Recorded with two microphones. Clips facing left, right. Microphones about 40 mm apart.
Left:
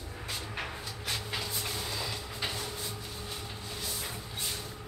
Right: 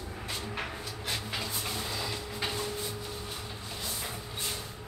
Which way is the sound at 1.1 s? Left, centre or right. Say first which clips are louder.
Even; centre.